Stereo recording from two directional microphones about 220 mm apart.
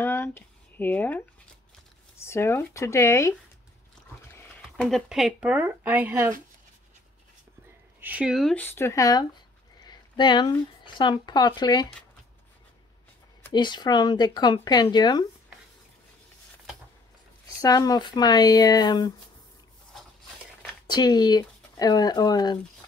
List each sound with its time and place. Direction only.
0.0 s a sound: 10° left (ahead or behind)
2.1 s speech: 10° left (ahead or behind)
4.4 s speech: centre (ahead or behind)
8.0 s speech: 5° right (ahead or behind); by 11.9 s 20° left (ahead or behind)
13.5 s speech: 20° left (ahead or behind)
17.6 s speech: 15° left (ahead or behind)
19.9 s a sound: centre (ahead or behind)
20.8 s speech: 20° left (ahead or behind)